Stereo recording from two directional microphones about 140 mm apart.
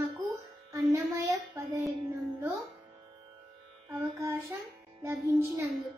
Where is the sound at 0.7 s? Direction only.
25° right (ahead or behind).